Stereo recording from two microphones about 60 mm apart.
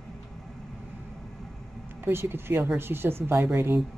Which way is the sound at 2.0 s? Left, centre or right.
Right.